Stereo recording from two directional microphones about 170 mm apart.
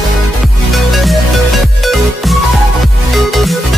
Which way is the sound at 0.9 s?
Centre (ahead or behind).